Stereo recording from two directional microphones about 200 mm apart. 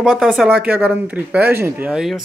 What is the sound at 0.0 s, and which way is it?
Speech, centre (ahead or behind).